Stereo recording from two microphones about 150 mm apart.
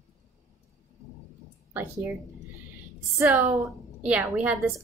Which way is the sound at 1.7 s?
15° right (ahead or behind).